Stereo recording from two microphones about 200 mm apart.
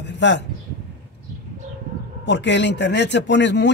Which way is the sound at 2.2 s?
60° left (ahead or behind).